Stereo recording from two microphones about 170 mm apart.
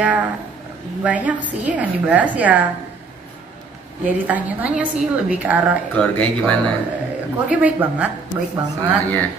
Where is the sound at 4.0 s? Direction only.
10° right (ahead or behind).